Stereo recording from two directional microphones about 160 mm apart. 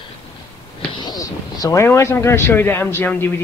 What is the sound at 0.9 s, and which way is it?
Speech, 25° left (ahead or behind).